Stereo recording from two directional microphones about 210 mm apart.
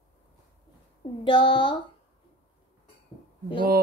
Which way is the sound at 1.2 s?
25° left (ahead or behind).